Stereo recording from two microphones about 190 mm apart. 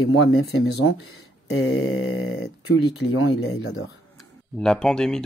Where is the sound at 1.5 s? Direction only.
90° left.